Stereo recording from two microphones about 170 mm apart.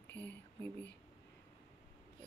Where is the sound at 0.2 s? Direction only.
10° left (ahead or behind).